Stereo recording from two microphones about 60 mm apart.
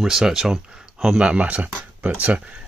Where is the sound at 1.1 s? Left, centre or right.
Centre.